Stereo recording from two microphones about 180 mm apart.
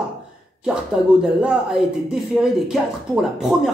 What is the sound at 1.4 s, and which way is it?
Speech, 5° right (ahead or behind).